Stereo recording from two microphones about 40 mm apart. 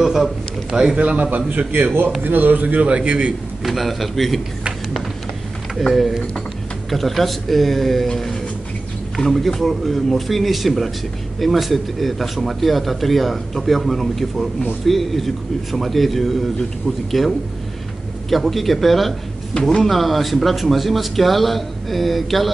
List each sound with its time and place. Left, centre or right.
0.0 s a man's voice: centre
0.9 s a man's voice: right
3.6 s a man's voice: centre
5.8 s a man's voice: centre
9.2 s a man's voice: centre